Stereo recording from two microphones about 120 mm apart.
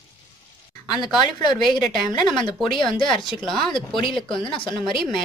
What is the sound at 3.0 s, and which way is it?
Speech, 5° left (ahead or behind).